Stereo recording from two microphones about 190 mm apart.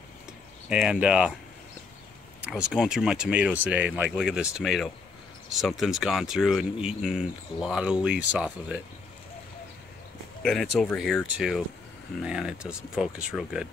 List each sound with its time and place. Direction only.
0.7 s speech: 5° right (ahead or behind)
2.4 s speech: 5° right (ahead or behind)
10.4 s speech: centre (ahead or behind)